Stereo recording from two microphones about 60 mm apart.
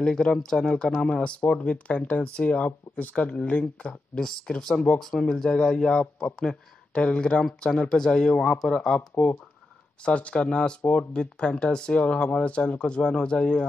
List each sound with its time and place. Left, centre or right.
0.0 s speech: centre
9.1 s speech: left